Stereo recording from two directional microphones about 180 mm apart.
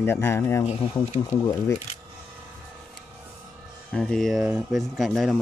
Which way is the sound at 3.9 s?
5° left (ahead or behind).